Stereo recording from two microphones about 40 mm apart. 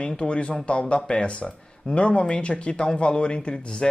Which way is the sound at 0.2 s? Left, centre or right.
Left.